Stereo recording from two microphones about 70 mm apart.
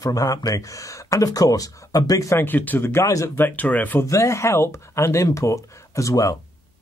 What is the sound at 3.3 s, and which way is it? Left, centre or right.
Speech, left.